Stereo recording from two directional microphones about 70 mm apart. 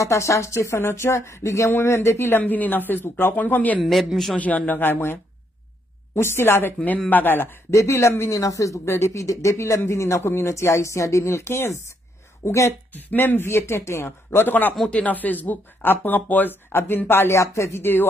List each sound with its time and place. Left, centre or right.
0.0 s speech: left
2.4 s speech: left
3.8 s a man's voice: centre
4.4 s speech: left
6.8 s speech: left
7.7 s speech: left
12.9 s speech: left
13.5 s speech: left
14.4 s speech: left